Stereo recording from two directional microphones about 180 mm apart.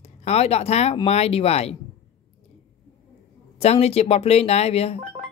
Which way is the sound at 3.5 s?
35° left (ahead or behind).